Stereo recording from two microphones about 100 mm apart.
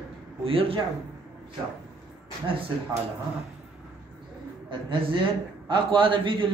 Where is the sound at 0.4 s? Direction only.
70° right (ahead or behind).